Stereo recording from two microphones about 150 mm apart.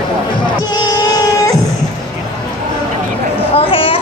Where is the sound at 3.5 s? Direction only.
35° left (ahead or behind).